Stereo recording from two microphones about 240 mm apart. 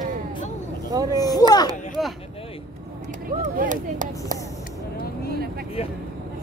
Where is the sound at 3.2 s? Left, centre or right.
Right.